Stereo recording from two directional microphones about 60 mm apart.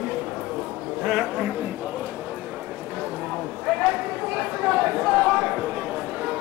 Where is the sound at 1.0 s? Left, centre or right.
Centre.